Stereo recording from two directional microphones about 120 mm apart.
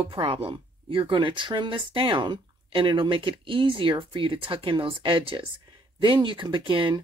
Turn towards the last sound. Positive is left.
turn(degrees=-45)  # may be behind; listen again after turning